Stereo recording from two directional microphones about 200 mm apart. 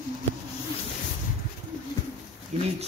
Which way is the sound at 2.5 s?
35° right (ahead or behind).